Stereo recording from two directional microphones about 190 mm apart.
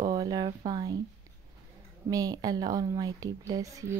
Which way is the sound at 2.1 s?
20° right (ahead or behind).